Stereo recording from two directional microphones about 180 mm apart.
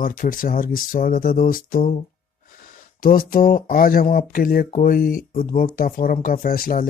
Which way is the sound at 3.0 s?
50° left (ahead or behind).